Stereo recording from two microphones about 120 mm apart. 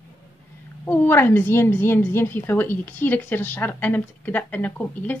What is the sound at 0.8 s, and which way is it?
A woman's voice, 15° left (ahead or behind).